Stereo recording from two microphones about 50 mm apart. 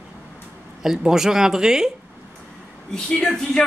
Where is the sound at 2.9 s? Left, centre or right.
Centre.